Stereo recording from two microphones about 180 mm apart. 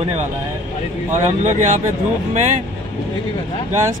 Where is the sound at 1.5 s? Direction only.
45° right (ahead or behind).